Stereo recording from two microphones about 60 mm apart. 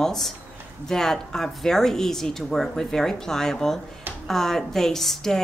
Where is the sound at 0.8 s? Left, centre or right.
Centre.